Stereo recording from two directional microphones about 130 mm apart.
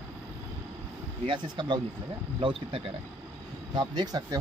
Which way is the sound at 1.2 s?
40° right (ahead or behind).